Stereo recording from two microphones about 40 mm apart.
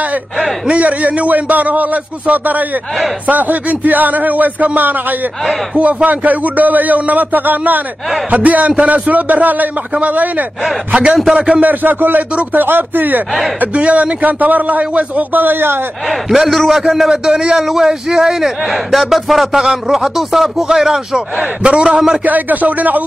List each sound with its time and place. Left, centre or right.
0.7 s a man's voice: right
6.0 s a man's voice: right
11.3 s speech: centre
11.6 s a man's voice: right
13.7 s a man's voice: right
16.1 s a man's voice: centre
17.1 s speech: centre
17.6 s a man's voice: centre
22.2 s a man's voice: right